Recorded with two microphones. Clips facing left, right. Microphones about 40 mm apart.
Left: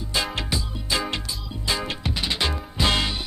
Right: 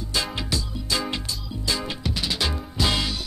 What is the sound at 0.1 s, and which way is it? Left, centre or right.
Music, centre.